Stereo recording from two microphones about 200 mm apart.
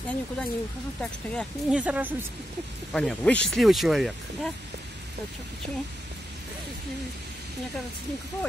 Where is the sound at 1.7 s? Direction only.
5° right (ahead or behind).